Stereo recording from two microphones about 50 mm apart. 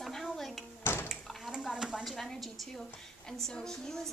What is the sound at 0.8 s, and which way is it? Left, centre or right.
Bathtub, left.